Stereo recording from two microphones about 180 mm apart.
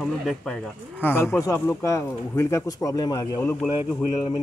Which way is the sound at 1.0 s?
10° left (ahead or behind).